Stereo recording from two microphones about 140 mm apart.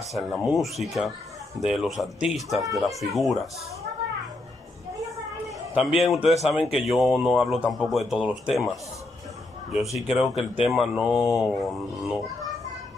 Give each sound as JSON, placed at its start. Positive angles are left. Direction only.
{"t": 0.1, "sound": "speech", "side_deg": 0}
{"t": 5.8, "sound": "speech", "side_deg": -5}